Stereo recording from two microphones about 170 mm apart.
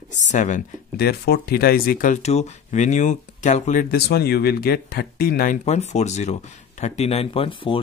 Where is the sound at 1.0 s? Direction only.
70° left (ahead or behind).